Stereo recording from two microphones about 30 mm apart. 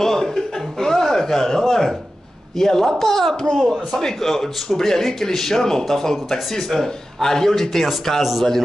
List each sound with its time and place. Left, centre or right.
0.0 s chuckle: centre
2.5 s speech: centre
8.2 s a man's voice: centre